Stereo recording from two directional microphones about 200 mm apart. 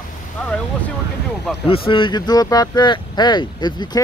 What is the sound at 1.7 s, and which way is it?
Speech, 25° left (ahead or behind).